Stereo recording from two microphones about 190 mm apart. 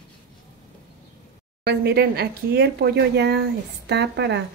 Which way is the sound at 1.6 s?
60° right (ahead or behind).